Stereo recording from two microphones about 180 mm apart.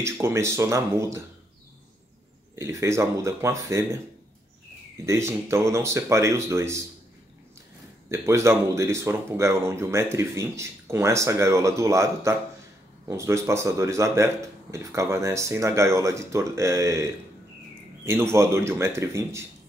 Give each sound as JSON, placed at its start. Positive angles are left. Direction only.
{"t": 0.0, "sound": "speech", "side_deg": -15}
{"t": 2.6, "sound": "speech", "side_deg": -15}
{"t": 5.0, "sound": "speech", "side_deg": -15}
{"t": 8.1, "sound": "speech", "side_deg": -15}